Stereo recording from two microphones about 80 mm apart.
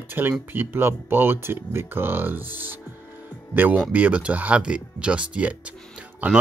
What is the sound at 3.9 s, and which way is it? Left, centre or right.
Speech, centre.